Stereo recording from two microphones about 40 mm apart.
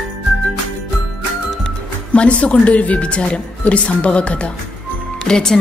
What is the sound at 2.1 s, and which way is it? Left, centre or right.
A woman's voice, left.